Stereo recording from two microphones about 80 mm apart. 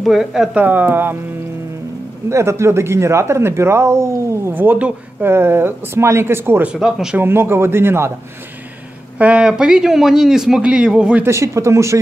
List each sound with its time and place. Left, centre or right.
0.0 s speech: centre
0.6 s speech: right
2.2 s speech: right; by 5.3 s centre
5.3 s speech: right
6.7 s a man's voice: centre
7.2 s speech: right
9.2 s a man's voice: centre
11.2 s speech: right